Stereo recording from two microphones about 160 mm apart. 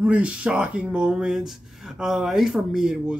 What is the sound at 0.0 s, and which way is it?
Speech, 5° right (ahead or behind).